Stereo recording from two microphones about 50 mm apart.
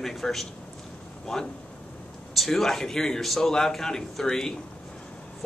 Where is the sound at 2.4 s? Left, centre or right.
Centre.